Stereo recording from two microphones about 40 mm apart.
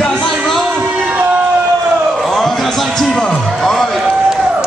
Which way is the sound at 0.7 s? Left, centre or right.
Right.